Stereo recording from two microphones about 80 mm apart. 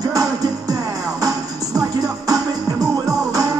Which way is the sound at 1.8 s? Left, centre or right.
Right.